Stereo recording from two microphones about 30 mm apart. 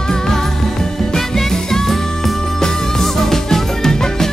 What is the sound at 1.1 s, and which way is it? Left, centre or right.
Music, centre.